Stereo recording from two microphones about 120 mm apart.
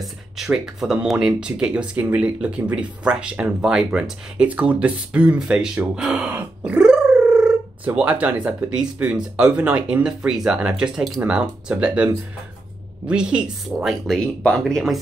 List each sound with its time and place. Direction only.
0.0 s speech: centre (ahead or behind)